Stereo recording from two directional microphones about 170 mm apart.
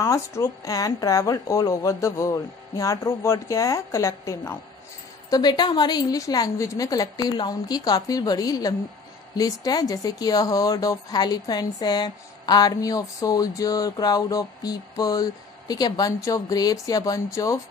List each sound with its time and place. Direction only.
0.0 s speech: 15° left (ahead or behind)